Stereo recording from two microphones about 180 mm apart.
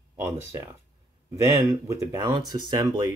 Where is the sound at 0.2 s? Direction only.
15° right (ahead or behind).